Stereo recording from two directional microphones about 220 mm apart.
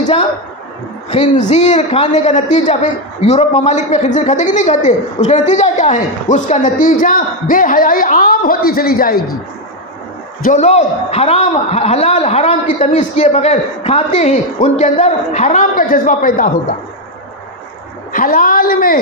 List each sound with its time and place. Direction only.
1.5 s a man's voice: 30° left (ahead or behind)
10.4 s a man's voice: 30° left (ahead or behind)
18.1 s a man's voice: 40° left (ahead or behind)